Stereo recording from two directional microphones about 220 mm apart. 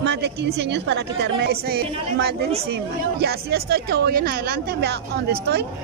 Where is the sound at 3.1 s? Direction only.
45° right (ahead or behind).